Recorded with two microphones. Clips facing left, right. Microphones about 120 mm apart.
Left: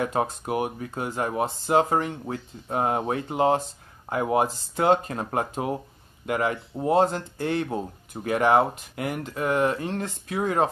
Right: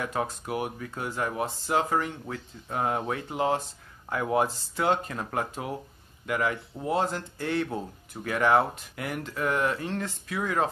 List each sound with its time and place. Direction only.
0.0 s speech: 30° left (ahead or behind)